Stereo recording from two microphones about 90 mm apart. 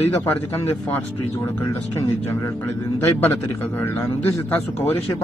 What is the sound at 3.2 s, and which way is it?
Speech, 25° left (ahead or behind).